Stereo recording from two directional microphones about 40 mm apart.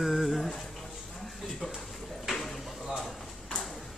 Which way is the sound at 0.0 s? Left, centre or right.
Centre.